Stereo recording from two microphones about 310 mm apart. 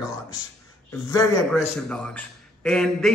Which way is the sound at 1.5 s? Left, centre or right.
Centre.